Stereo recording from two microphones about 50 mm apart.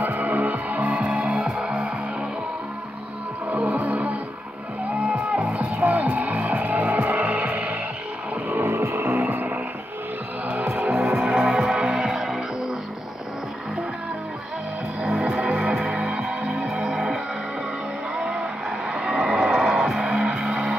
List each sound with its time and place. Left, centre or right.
0.0 s music: right
1.2 s music: centre
3.4 s music: right
8.5 s music: right
10.8 s music: right
11.3 s music: centre
15.0 s music: centre